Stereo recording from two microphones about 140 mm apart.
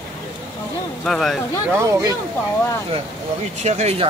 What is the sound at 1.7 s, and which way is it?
Speech, 20° right (ahead or behind).